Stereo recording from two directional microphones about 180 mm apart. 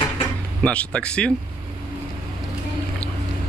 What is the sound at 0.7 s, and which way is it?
Speech, 5° left (ahead or behind).